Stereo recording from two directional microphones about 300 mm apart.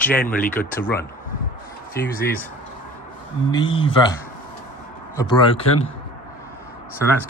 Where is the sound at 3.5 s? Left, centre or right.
Centre.